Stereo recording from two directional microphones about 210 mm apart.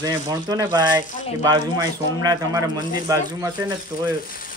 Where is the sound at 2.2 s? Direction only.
20° right (ahead or behind).